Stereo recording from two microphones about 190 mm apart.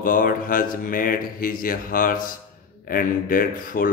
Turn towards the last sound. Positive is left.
turn(degrees=45)  # may be behind; listen again after turning